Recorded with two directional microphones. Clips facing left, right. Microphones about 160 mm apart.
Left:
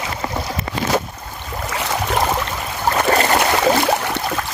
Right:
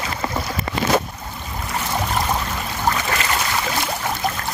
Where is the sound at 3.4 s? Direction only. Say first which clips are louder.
Left 8 dB; 70° left (ahead or behind).